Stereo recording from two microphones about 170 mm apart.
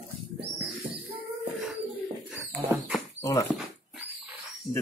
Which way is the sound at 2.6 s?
10° right (ahead or behind).